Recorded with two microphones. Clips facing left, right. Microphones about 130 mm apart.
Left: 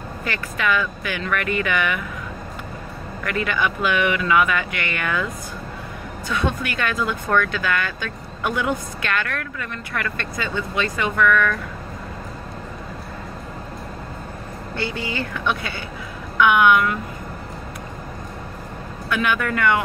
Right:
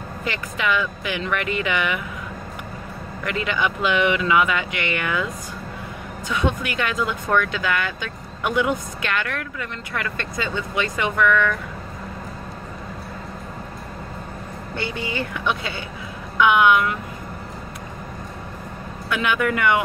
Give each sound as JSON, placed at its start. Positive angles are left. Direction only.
{"t": 0.2, "sound": "speech", "side_deg": -20}
{"t": 3.3, "sound": "speech", "side_deg": -20}
{"t": 14.8, "sound": "speech", "side_deg": -20}
{"t": 19.0, "sound": "speech", "side_deg": -15}